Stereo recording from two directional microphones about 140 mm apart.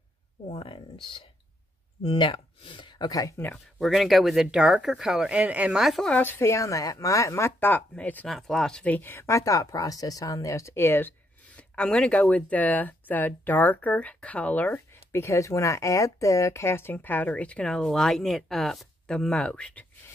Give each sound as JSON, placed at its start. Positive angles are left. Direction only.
{"t": 0.5, "sound": "speech", "side_deg": 40}
{"t": 3.8, "sound": "speech", "side_deg": 0}
{"t": 6.1, "sound": "speech", "side_deg": 15}